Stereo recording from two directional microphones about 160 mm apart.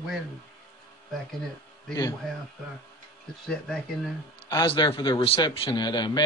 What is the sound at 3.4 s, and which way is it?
Speech, centre (ahead or behind).